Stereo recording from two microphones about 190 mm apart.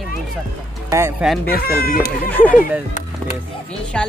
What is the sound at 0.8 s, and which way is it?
Music, 15° right (ahead or behind).